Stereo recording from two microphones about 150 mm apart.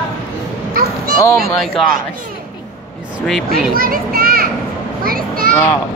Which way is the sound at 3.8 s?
75° right (ahead or behind).